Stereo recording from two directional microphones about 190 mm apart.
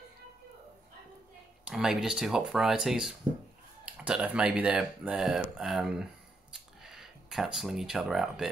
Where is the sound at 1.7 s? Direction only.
5° right (ahead or behind).